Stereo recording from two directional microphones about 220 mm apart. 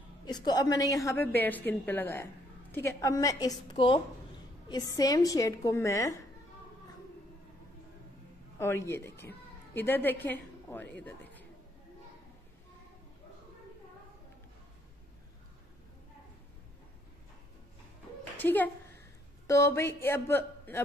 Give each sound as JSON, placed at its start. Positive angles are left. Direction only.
{"t": 0.2, "sound": "a woman's voice", "side_deg": 20}
{"t": 8.5, "sound": "a woman's voice", "side_deg": 10}
{"t": 18.4, "sound": "a woman's voice", "side_deg": 10}